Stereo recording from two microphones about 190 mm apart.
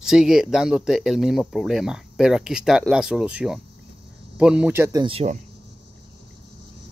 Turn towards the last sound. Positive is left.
turn(degrees=-30)  # may be behind; listen again after turning